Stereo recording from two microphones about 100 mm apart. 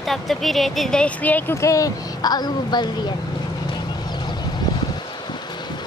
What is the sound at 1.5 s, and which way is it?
Speech, 30° left (ahead or behind).